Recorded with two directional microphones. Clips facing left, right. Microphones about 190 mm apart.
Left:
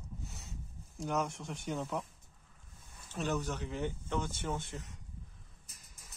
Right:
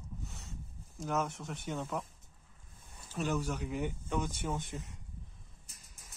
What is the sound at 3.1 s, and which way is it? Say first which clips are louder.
Speech: right 1 dB; 5° right (ahead or behind).